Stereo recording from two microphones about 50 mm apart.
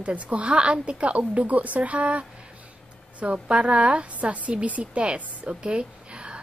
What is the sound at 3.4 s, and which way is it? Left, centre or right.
A woman's voice, right.